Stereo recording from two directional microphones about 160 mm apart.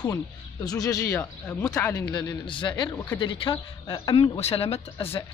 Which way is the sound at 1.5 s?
5° left (ahead or behind).